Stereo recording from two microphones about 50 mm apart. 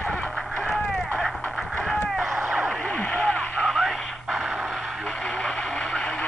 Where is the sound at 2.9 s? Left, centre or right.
Left.